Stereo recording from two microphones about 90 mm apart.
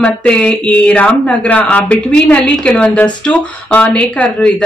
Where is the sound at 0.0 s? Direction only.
15° left (ahead or behind).